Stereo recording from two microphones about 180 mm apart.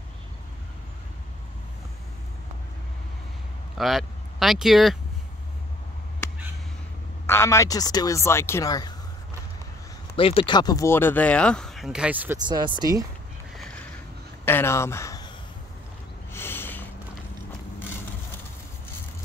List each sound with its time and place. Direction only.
3.7 s speech: centre (ahead or behind)
7.2 s speech: 15° left (ahead or behind)
10.1 s speech: 30° left (ahead or behind); by 12.4 s 10° right (ahead or behind)
12.4 s speech: 25° right (ahead or behind)
14.4 s a sound: 10° left (ahead or behind)
16.3 s a sound: 10° left (ahead or behind)